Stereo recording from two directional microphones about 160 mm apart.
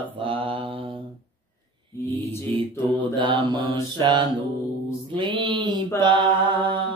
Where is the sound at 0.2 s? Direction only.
35° right (ahead or behind).